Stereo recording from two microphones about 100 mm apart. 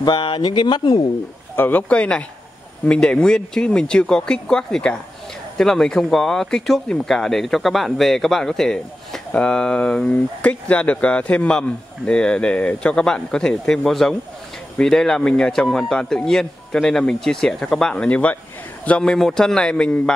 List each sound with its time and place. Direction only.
0.0 s speech: 55° left (ahead or behind)
1.6 s speech: 20° left (ahead or behind)